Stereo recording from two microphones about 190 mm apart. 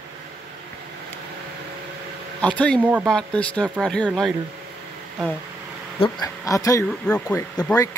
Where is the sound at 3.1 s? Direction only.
5° left (ahead or behind).